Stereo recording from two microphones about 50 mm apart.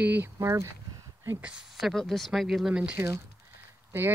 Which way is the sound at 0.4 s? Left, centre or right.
Right.